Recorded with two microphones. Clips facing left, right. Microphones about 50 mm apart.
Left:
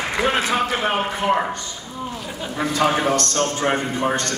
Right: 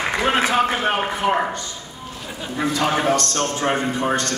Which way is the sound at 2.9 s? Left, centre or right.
Centre.